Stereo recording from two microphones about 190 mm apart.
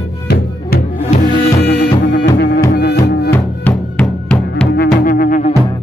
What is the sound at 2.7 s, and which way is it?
Music, 60° left (ahead or behind).